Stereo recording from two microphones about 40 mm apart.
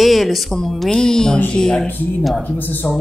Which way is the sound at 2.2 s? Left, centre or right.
Centre.